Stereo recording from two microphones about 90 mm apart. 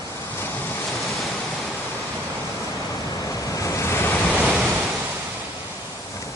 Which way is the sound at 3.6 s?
30° left (ahead or behind).